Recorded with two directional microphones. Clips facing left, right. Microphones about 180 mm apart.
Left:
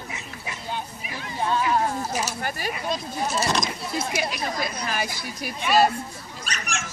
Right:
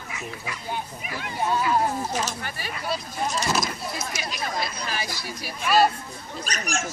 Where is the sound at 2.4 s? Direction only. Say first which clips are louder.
Left 6 dB; 45° left (ahead or behind).